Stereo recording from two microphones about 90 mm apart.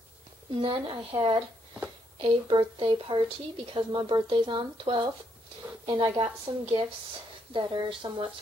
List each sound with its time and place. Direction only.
0.5 s a woman's voice: 75° right (ahead or behind)